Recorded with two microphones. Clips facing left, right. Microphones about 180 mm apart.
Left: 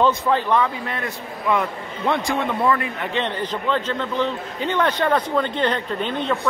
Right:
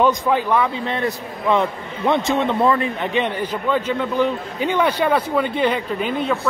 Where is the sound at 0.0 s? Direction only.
10° right (ahead or behind).